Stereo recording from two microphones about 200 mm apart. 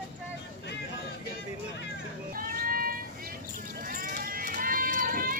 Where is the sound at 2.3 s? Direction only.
45° right (ahead or behind).